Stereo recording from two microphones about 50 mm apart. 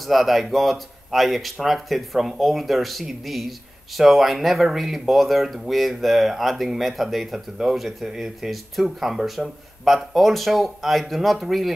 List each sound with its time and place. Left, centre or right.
0.0 s speech: centre